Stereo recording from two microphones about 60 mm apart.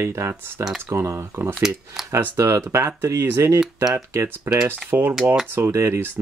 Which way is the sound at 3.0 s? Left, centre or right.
Right.